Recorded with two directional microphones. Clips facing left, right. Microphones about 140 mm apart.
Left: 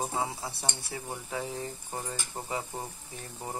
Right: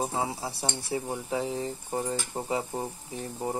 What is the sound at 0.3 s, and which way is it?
Speech, 30° right (ahead or behind).